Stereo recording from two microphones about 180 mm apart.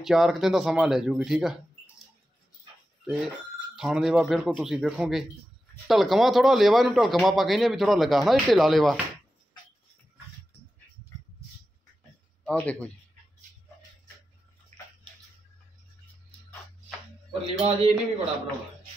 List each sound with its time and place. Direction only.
0.0 s speech: centre (ahead or behind)
3.7 s speech: 5° right (ahead or behind)
12.4 s a man's voice: 5° left (ahead or behind)
17.3 s speech: 35° right (ahead or behind)